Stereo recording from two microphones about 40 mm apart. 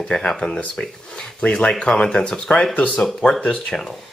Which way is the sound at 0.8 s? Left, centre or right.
Left.